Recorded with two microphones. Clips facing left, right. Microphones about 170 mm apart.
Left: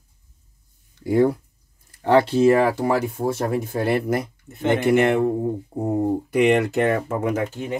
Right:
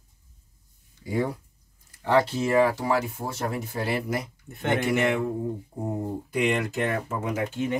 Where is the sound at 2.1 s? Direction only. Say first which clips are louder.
Left 6 dB; 70° left (ahead or behind).